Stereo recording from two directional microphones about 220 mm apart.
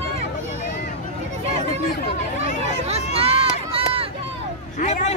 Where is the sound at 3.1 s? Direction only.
25° right (ahead or behind).